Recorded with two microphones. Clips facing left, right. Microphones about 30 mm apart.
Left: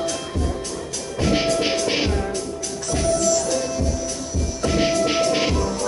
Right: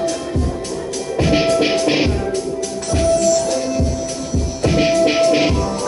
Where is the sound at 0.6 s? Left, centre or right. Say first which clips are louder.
Right 6 dB; right.